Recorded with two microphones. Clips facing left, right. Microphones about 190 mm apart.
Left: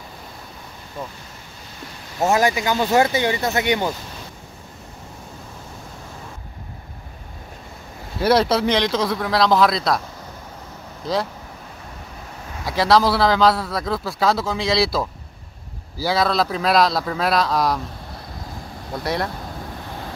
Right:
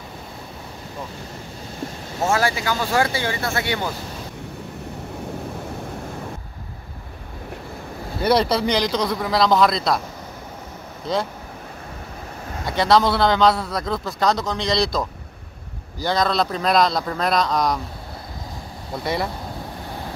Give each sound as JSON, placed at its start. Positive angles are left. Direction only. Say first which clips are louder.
{"t": 2.2, "sound": "speech", "louder": "left 3 dB", "side_deg": 20}
{"t": 8.2, "sound": "a man's voice", "louder": "left 1 dB", "side_deg": 0}
{"t": 11.1, "sound": "a man's voice", "louder": "even", "side_deg": 0}
{"t": 12.6, "sound": "a man's voice", "louder": "left 1 dB", "side_deg": 0}
{"t": 19.0, "sound": "a man's voice", "louder": "even", "side_deg": 0}